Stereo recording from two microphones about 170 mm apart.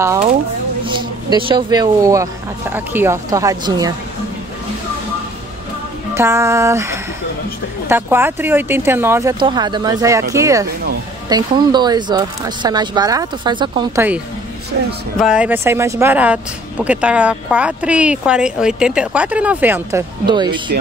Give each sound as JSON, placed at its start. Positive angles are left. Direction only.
{"t": 0.8, "sound": "speech", "side_deg": -30}
{"t": 6.1, "sound": "speech", "side_deg": -15}
{"t": 13.9, "sound": "speech", "side_deg": -10}
{"t": 20.2, "sound": "speech", "side_deg": -25}